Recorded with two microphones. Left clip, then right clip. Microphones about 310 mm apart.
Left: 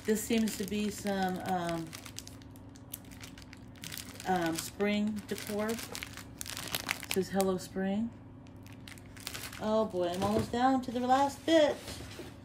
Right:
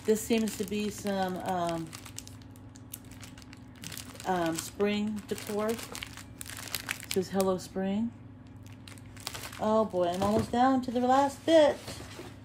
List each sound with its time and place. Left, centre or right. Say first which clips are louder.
0.0 s speech: right 4 dB; centre
3.8 s crumpling: right 2 dB; centre
5.3 s speech: right 4 dB; centre
6.7 s crumpling: left 1 dB; centre
7.2 s speech: right 3 dB; centre
9.2 s speech: right 5 dB; centre